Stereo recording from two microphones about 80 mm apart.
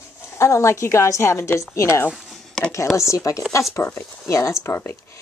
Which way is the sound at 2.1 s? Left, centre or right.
Centre.